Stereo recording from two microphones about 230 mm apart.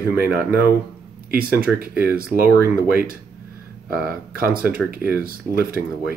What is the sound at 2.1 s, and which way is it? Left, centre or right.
Speech, right.